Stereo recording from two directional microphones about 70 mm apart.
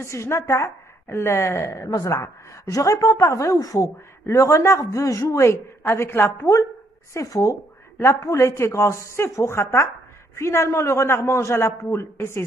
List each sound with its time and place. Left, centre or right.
0.0 s a man's voice: left
7.2 s a man's voice: left